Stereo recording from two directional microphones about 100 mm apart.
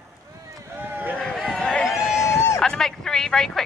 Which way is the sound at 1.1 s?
5° left (ahead or behind).